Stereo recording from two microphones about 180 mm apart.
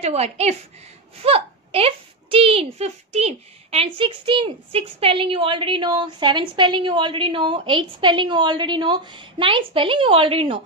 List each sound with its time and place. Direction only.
0.0 s a woman's voice: 35° right (ahead or behind)